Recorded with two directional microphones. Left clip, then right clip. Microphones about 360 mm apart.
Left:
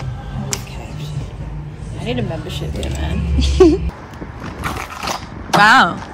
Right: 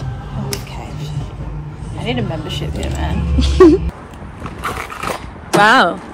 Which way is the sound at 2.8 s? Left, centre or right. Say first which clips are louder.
Right 3 dB; right.